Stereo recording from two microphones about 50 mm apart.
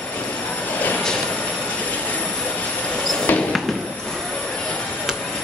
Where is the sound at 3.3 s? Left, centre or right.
Left.